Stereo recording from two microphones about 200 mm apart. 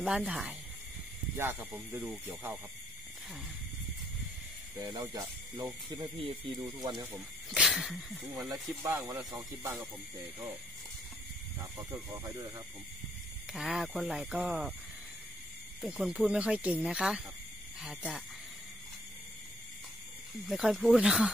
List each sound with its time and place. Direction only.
0.0 s speech: 5° right (ahead or behind)
4.7 s speech: 20° right (ahead or behind)
7.2 s speech: 5° right (ahead or behind)
8.8 s speech: 15° right (ahead or behind)
11.7 s speech: 15° right (ahead or behind)
13.5 s speech: 5° right (ahead or behind)
15.8 s speech: centre (ahead or behind)
20.4 s speech: centre (ahead or behind)